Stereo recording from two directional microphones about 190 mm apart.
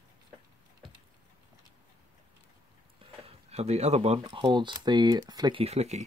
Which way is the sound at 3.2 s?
35° right (ahead or behind).